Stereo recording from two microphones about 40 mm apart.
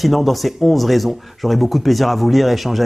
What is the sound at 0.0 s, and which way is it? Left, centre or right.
Speech, centre.